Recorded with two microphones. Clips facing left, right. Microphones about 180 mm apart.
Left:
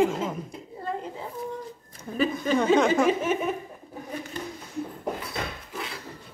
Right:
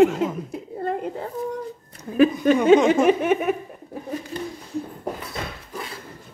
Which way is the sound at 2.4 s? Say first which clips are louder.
Right 6 dB; 65° right (ahead or behind).